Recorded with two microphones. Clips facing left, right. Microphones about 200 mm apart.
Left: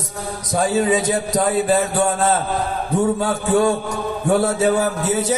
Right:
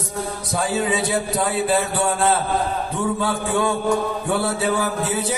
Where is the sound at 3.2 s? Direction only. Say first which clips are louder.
Left 4 dB; 40° left (ahead or behind).